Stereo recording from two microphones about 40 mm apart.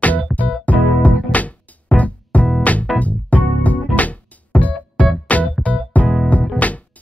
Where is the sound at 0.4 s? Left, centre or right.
Left.